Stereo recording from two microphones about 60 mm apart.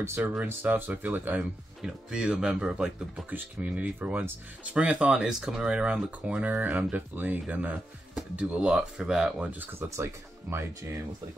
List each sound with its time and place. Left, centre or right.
0.2 s speech: right
1.8 s speech: centre
3.3 s speech: right
9.8 s speech: right